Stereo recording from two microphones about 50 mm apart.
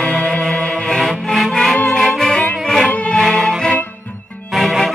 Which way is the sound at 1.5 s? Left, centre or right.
Centre.